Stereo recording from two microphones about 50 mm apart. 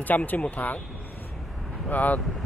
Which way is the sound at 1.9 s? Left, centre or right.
Left.